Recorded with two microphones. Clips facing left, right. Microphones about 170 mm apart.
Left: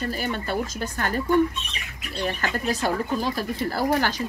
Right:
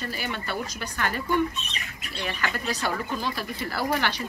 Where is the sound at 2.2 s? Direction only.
40° left (ahead or behind).